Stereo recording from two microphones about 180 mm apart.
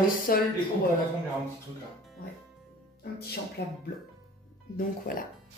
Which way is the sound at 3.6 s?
65° left (ahead or behind).